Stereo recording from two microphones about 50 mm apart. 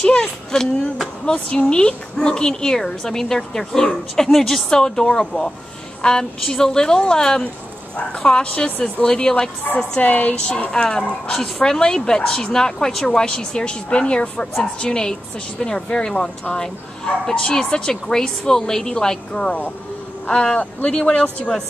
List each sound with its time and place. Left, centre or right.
0.0 s a woman's voice: centre
10.7 s a woman's voice: centre